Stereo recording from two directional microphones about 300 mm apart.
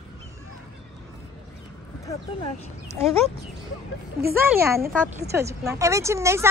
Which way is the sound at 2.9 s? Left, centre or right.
Centre.